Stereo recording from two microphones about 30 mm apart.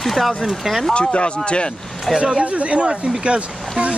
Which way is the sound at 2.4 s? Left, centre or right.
Right.